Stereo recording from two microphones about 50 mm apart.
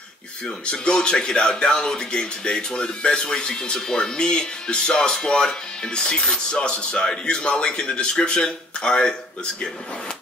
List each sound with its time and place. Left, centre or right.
0.7 s speech: centre